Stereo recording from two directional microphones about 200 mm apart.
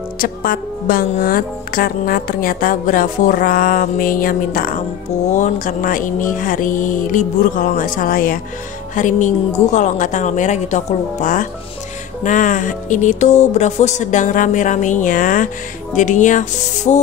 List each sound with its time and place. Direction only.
0.2 s speech: 45° left (ahead or behind)